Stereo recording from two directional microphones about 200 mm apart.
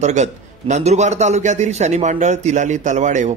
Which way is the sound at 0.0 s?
35° right (ahead or behind).